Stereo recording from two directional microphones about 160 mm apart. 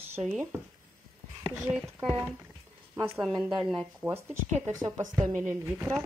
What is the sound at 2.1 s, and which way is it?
Speech, 15° right (ahead or behind).